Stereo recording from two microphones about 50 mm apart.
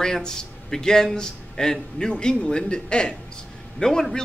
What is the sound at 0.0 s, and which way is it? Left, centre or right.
A man's voice, centre.